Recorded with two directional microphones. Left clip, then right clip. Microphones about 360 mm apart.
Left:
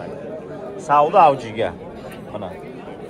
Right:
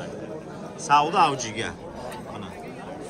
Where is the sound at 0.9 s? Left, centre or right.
Centre.